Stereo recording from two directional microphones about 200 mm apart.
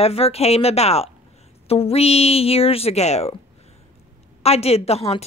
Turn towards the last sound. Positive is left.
turn(degrees=30)  # may be behind; listen again after turning